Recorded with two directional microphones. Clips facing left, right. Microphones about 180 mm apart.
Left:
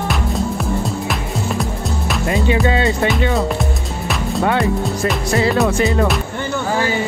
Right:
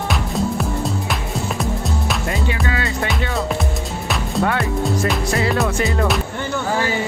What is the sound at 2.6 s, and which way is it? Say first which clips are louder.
Music: left 6 dB; 25° left (ahead or behind).